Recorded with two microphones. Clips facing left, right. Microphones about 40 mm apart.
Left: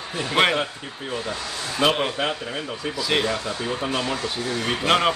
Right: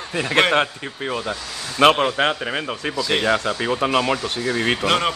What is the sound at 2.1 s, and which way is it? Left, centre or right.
A man's voice, right.